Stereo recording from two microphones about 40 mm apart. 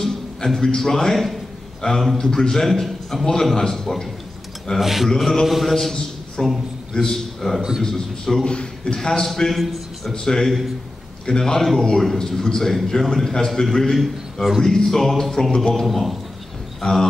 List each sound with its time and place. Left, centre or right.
0.0 s a sound: centre
0.7 s a man's voice: centre
1.1 s a man's voice: centre
1.8 s a man's voice: left; by 4.1 s centre
4.7 s a man's voice: centre
6.4 s a man's voice: centre
10.2 s a man's voice: centre
13.9 s a man's voice: centre
14.6 s a man's voice: centre
16.8 s a man's voice: centre